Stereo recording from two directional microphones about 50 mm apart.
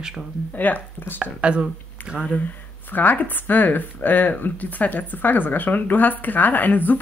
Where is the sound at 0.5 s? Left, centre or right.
Left.